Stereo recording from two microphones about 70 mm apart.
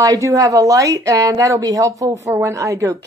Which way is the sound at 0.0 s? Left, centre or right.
Right.